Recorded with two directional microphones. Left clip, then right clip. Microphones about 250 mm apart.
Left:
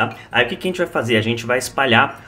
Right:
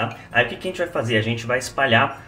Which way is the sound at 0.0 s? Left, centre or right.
Left.